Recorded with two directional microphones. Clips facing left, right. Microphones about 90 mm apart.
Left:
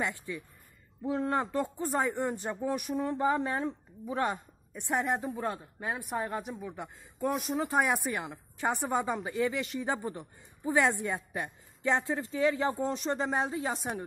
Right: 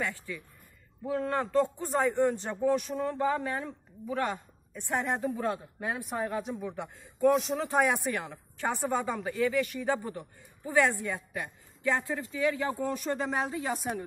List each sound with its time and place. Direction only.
0.0 s speech: 20° left (ahead or behind)
1.8 s speech: centre (ahead or behind); by 5.1 s 15° left (ahead or behind)
5.1 s speech: 5° left (ahead or behind); by 14.0 s 30° left (ahead or behind)